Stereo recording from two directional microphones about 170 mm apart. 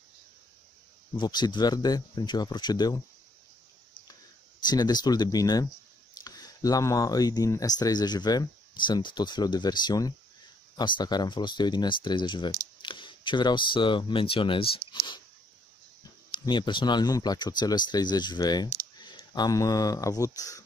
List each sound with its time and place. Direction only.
1.1 s speech: 25° left (ahead or behind)
4.6 s speech: 25° left (ahead or behind)
16.3 s speech: 30° left (ahead or behind)